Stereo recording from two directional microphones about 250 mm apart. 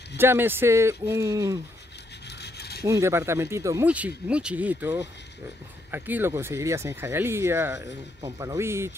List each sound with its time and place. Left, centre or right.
0.2 s speech: centre
2.4 s rub: left
2.8 s speech: centre